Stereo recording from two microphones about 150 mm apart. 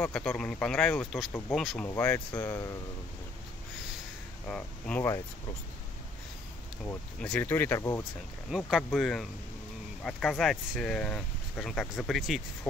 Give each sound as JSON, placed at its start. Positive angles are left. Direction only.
{"t": 0.0, "sound": "speech", "side_deg": 5}
{"t": 1.9, "sound": "speech", "side_deg": 15}
{"t": 4.5, "sound": "speech", "side_deg": 10}
{"t": 6.9, "sound": "speech", "side_deg": 10}
{"t": 8.5, "sound": "speech", "side_deg": -5}